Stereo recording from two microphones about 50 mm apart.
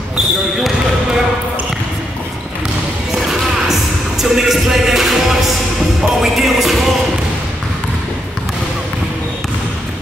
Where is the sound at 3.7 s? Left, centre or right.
Centre.